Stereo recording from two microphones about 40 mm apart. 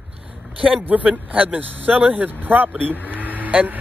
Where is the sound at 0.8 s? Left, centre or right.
Right.